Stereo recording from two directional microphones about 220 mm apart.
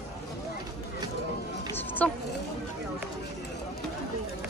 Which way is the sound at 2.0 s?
5° left (ahead or behind).